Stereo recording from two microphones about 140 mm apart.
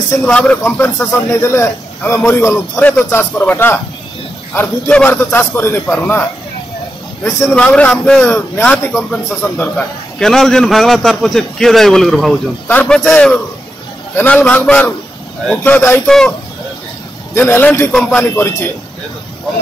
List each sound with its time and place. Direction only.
0.2 s a man's voice: 10° left (ahead or behind)
7.5 s a man's voice: 10° left (ahead or behind)
17.3 s a man's voice: 15° left (ahead or behind)